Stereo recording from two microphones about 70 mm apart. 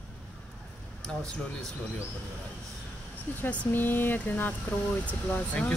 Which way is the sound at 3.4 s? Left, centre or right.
Left.